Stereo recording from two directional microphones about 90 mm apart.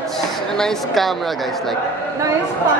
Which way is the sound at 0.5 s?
5° left (ahead or behind).